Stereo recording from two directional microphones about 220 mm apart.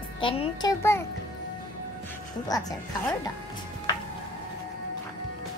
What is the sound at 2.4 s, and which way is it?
Speech, 15° left (ahead or behind).